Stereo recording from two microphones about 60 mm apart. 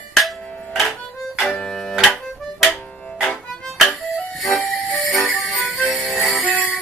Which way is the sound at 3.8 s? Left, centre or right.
Centre.